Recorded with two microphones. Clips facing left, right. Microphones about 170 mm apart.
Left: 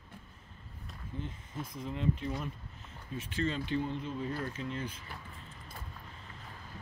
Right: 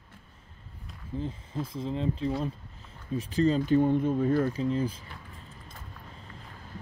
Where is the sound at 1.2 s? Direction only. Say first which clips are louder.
Right 7 dB; 30° right (ahead or behind).